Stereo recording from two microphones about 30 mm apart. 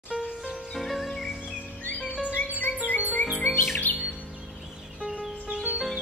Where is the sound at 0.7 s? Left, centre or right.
Centre.